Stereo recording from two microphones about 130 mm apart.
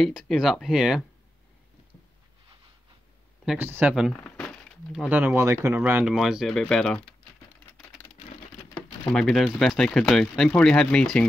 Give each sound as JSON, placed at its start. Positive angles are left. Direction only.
{"t": 0.3, "sound": "speech", "side_deg": 0}
{"t": 3.5, "sound": "speech", "side_deg": -15}
{"t": 4.1, "sound": "a sound", "side_deg": 10}
{"t": 5.0, "sound": "speech", "side_deg": -15}
{"t": 9.1, "sound": "speech", "side_deg": 0}